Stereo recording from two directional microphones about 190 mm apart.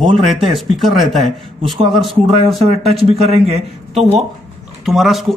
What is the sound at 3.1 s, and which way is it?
A man's voice, 30° right (ahead or behind).